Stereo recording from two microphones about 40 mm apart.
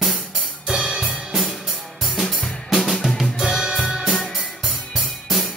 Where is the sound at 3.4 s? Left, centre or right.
Centre.